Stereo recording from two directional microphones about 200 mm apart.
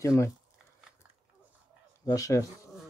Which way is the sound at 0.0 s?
15° left (ahead or behind).